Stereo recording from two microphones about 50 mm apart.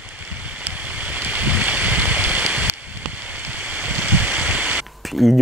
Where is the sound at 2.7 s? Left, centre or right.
Right.